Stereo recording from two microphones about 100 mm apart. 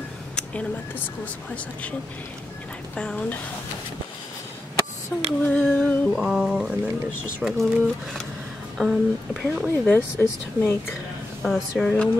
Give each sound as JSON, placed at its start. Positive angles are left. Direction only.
{"t": 0.4, "sound": "speech", "side_deg": 10}
{"t": 3.0, "sound": "speech", "side_deg": 10}
{"t": 5.1, "sound": "speech", "side_deg": 15}
{"t": 5.5, "sound": "a sound", "side_deg": 10}
{"t": 6.1, "sound": "a sound", "side_deg": -5}
{"t": 7.3, "sound": "speech", "side_deg": -10}
{"t": 8.7, "sound": "speech", "side_deg": 0}
{"t": 9.7, "sound": "speech", "side_deg": 25}
{"t": 11.4, "sound": "speech", "side_deg": 0}
{"t": 11.8, "sound": "speech", "side_deg": 10}